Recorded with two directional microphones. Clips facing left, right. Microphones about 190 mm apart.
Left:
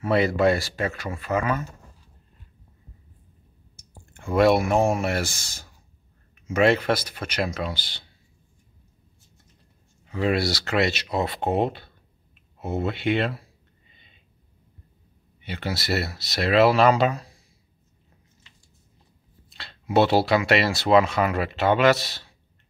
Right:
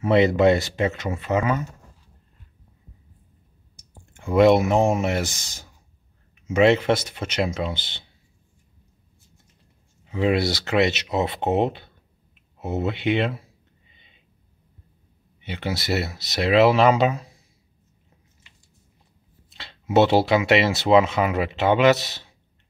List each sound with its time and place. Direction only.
0.0 s speech: 20° right (ahead or behind)
3.7 s speech: 15° right (ahead or behind)
10.0 s speech: 20° right (ahead or behind)
15.4 s speech: 15° right (ahead or behind)
19.5 s speech: 15° right (ahead or behind)